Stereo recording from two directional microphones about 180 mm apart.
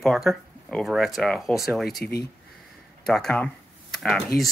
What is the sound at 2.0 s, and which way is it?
Speech, 60° left (ahead or behind).